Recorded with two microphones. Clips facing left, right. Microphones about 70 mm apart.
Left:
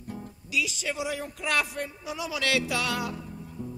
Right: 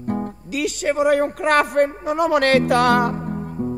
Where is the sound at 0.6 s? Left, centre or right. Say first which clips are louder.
Right 10 dB; right.